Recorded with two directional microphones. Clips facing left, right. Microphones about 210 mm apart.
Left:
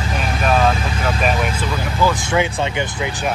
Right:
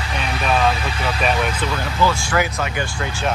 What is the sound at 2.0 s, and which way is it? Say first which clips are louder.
Speech: left 2 dB; 20° left (ahead or behind).